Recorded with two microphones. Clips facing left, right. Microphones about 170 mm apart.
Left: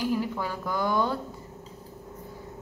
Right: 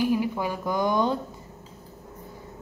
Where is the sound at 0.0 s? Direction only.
15° right (ahead or behind).